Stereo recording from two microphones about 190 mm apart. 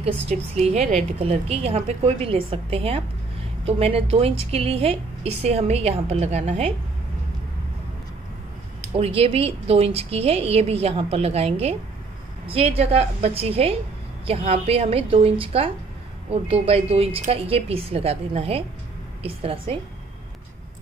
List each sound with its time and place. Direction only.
0.0 s a woman's voice: 35° right (ahead or behind)
8.9 s a woman's voice: 30° right (ahead or behind)